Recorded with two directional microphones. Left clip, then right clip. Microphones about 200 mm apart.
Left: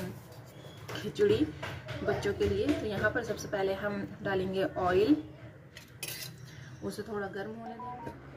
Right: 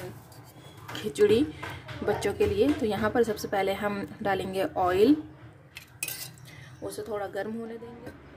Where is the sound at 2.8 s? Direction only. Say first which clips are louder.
Right 5 dB; 55° right (ahead or behind).